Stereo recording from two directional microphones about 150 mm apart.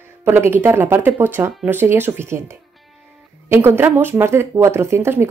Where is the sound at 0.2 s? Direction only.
15° right (ahead or behind).